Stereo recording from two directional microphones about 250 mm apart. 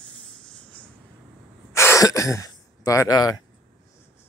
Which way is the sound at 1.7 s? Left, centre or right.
Centre.